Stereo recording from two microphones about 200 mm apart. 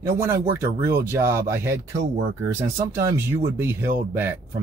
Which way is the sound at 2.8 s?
15° right (ahead or behind).